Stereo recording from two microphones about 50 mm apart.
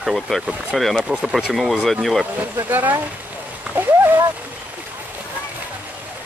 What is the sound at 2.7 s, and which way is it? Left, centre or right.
Speech, right.